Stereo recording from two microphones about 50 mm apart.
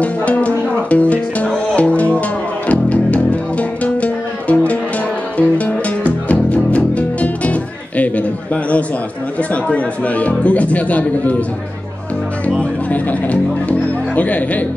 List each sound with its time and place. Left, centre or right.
0.0 s music: left
9.4 s speech: left
12.5 s music: left